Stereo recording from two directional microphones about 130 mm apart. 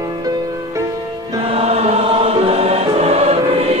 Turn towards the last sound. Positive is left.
turn(degrees=-50)  # may be behind; listen again after turning